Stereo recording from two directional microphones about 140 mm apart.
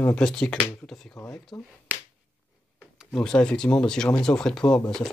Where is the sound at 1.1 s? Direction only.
20° left (ahead or behind).